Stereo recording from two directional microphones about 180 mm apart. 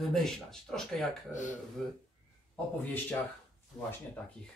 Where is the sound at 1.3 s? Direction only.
45° left (ahead or behind).